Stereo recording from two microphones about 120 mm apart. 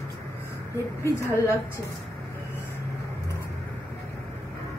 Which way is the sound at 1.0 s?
20° left (ahead or behind).